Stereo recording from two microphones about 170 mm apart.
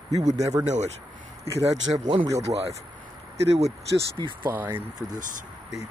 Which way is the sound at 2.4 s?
35° right (ahead or behind).